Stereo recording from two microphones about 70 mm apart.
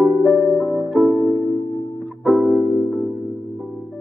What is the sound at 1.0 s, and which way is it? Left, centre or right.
Music, right.